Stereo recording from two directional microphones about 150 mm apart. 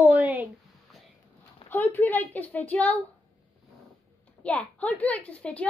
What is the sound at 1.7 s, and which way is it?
A child's voice, 10° left (ahead or behind).